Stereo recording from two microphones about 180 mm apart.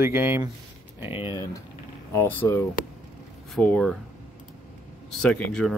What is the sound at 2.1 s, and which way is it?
Speech, 10° left (ahead or behind).